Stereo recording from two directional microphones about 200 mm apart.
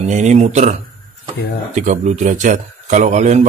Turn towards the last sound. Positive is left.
turn(degrees=-35)  # may be behind; listen again after turning